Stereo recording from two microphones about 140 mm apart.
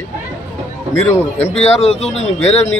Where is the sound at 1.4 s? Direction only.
50° left (ahead or behind).